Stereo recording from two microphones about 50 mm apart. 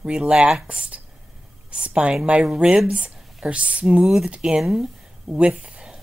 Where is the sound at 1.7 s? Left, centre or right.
Right.